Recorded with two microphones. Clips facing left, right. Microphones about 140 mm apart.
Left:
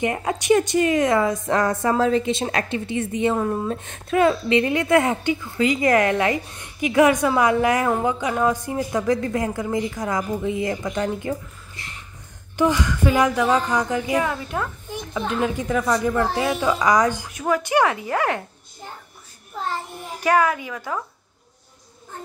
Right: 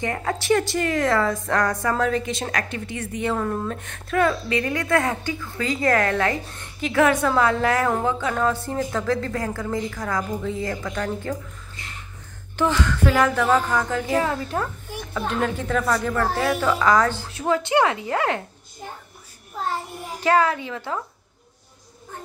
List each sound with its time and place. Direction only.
0.0 s a woman's voice: 15° left (ahead or behind)
12.5 s speech: 10° left (ahead or behind)
14.2 s a woman's voice: 35° right (ahead or behind)
15.0 s speech: 15° left (ahead or behind)
17.3 s a woman's voice: 25° right (ahead or behind)
20.2 s a woman's voice: 25° right (ahead or behind)